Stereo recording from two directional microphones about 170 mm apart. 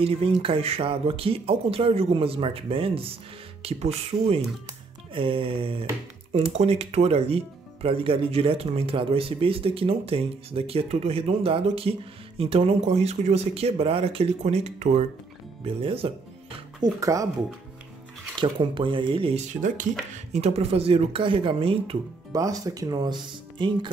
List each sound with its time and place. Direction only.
0.0 s speech: 35° right (ahead or behind)
16.8 s speech: 20° right (ahead or behind)
18.4 s speech: 30° right (ahead or behind)
19.5 s speech: 50° right (ahead or behind)
20.3 s speech: 40° right (ahead or behind)
22.3 s speech: 20° right (ahead or behind)